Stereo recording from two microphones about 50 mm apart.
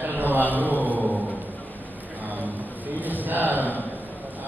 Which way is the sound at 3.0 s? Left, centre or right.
Right.